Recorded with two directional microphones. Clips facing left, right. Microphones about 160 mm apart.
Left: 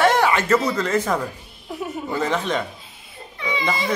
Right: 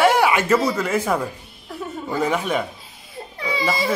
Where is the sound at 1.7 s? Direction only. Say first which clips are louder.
Left 2 dB; 15° left (ahead or behind).